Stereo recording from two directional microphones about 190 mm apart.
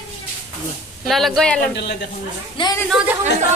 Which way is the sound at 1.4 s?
5° left (ahead or behind).